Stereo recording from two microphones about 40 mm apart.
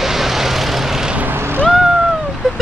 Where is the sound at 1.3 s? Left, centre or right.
Right.